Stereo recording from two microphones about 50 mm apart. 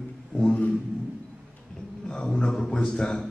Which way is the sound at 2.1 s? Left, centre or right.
Centre.